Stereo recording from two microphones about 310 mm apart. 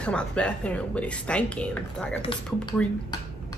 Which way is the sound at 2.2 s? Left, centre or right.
Centre.